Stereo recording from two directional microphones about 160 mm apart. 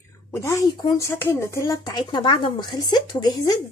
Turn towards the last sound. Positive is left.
turn(degrees=25)  # may be behind; listen again after turning